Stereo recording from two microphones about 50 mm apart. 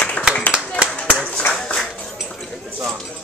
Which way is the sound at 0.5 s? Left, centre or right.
Right.